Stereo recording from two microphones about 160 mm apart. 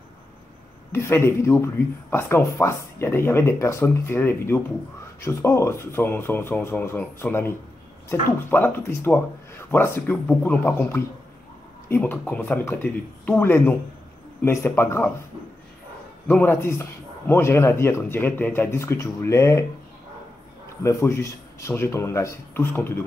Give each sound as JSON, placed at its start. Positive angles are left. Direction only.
{"t": 0.9, "sound": "speech", "side_deg": 15}
{"t": 16.3, "sound": "speech", "side_deg": 10}
{"t": 20.8, "sound": "speech", "side_deg": 20}